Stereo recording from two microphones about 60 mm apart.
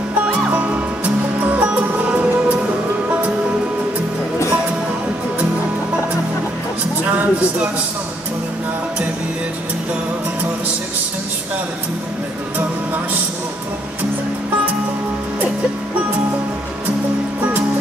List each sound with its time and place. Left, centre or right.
0.3 s music: right
7.1 s a sound: right
17.4 s music: right